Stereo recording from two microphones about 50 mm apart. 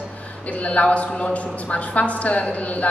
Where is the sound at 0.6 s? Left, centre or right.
Left.